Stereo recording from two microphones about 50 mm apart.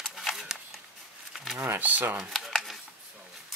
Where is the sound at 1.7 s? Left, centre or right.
Right.